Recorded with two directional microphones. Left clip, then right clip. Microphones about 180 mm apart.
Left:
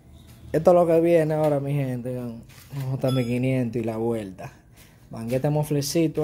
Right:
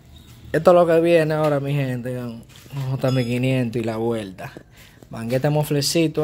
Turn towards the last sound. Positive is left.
turn(degrees=-5)  # may be behind; listen again after turning